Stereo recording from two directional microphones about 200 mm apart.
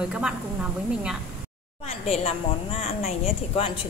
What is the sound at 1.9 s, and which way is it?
A woman's voice, 30° left (ahead or behind).